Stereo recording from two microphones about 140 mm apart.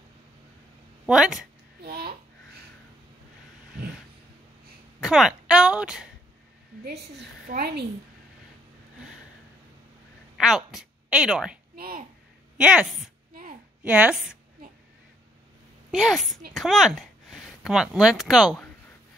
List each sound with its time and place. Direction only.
1.0 s a woman's voice: 5° right (ahead or behind)
1.9 s babbling: 90° right
5.0 s speech: centre (ahead or behind)
7.5 s a woman's voice: 60° right (ahead or behind)
10.3 s a woman's voice: centre (ahead or behind)
11.7 s oink: 90° right
12.5 s a woman's voice: 5° right (ahead or behind)
13.3 s a sound: 90° right
13.8 s a woman's voice: 10° right (ahead or behind)
15.9 s a woman's voice: centre (ahead or behind)